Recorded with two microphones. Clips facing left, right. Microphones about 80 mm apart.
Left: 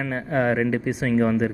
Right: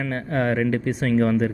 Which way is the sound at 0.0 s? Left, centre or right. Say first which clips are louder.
Left 1 dB; centre.